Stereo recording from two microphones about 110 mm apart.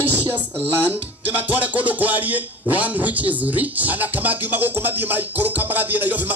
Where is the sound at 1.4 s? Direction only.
15° right (ahead or behind).